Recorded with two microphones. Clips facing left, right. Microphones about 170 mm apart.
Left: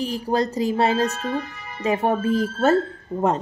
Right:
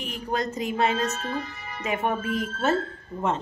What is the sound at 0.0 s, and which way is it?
Speech, 35° left (ahead or behind).